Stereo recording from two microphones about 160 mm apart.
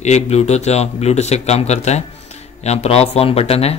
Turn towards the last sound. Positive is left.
turn(degrees=40)  # may be behind; listen again after turning